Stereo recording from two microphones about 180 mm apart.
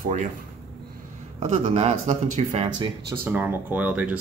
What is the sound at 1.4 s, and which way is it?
Speech, 35° right (ahead or behind).